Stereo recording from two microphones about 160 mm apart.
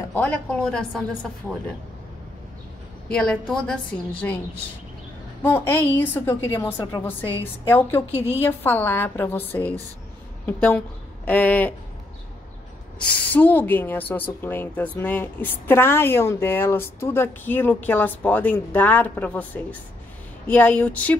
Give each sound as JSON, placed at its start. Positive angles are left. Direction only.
{"t": 0.1, "sound": "a woman's voice", "side_deg": 10}
{"t": 3.1, "sound": "a woman's voice", "side_deg": 5}
{"t": 5.7, "sound": "a woman's voice", "side_deg": 15}
{"t": 13.3, "sound": "a woman's voice", "side_deg": 10}